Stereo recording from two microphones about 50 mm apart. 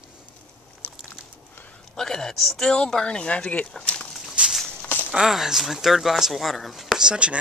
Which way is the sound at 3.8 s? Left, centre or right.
Left.